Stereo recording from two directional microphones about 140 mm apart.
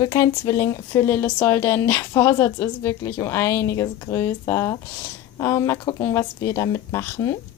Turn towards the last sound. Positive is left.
turn(degrees=20)  # may be behind; listen again after turning